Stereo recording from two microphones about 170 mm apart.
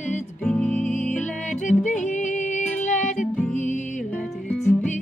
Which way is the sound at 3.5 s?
45° left (ahead or behind).